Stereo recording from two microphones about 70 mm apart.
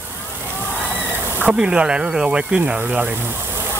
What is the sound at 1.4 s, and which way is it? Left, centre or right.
Speech, centre.